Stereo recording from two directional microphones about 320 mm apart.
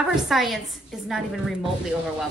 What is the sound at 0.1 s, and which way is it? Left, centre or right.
A woman's voice, centre.